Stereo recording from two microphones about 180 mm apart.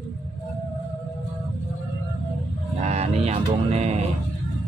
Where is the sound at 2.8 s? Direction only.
35° right (ahead or behind).